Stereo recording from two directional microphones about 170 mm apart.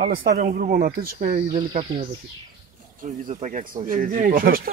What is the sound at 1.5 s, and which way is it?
Speech, 30° right (ahead or behind).